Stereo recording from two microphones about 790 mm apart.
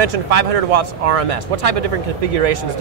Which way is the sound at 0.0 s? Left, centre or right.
Right.